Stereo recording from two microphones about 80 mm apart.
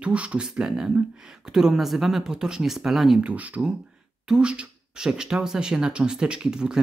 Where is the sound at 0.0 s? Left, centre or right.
Centre.